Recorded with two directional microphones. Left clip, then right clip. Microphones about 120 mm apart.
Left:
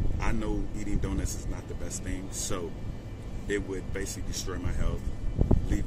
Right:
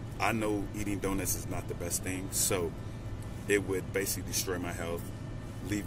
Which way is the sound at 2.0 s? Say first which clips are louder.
Right 3 dB; 15° left (ahead or behind).